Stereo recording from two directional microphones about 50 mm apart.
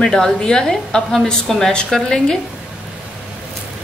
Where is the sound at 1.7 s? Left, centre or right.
Centre.